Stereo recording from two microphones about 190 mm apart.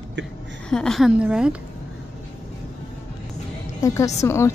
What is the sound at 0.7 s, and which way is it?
Speech, 5° left (ahead or behind).